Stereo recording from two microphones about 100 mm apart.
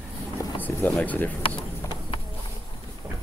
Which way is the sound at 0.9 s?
15° left (ahead or behind).